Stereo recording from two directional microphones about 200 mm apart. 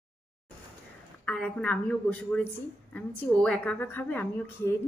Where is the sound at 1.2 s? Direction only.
5° left (ahead or behind).